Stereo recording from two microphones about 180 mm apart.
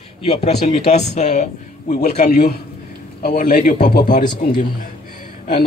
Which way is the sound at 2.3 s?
55° left (ahead or behind).